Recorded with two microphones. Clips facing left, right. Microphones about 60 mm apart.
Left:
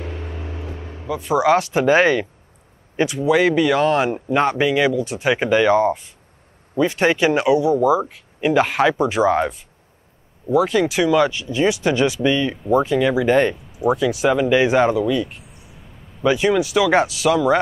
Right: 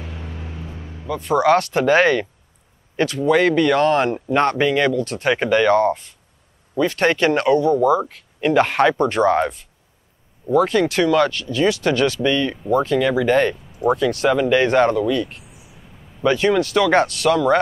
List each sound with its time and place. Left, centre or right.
1.0 s speech: centre